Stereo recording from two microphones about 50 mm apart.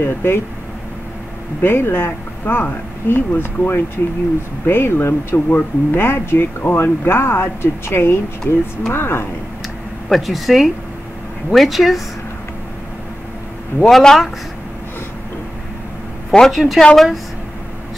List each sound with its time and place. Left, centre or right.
0.0 s speech: left
1.6 s speech: left
10.0 s speech: centre
13.8 s speech: centre
16.3 s speech: centre